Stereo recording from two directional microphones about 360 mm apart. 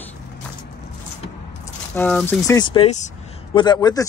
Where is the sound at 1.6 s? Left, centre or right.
Centre.